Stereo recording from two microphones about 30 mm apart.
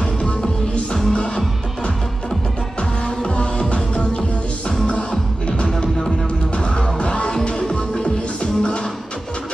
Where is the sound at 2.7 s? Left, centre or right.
Left.